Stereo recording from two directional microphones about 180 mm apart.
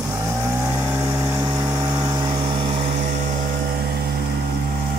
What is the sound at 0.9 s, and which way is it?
Vehicle, 15° right (ahead or behind).